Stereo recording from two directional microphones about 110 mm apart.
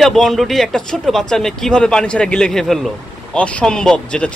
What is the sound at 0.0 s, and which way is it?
A man's voice, centre (ahead or behind).